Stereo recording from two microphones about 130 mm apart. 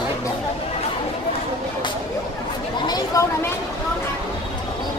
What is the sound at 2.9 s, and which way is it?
Chatter, 25° left (ahead or behind).